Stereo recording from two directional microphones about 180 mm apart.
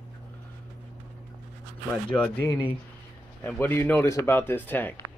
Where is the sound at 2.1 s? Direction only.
10° left (ahead or behind).